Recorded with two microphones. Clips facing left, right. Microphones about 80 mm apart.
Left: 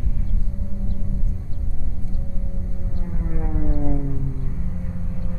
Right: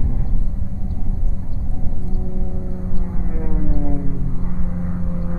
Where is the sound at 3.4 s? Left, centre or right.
Centre.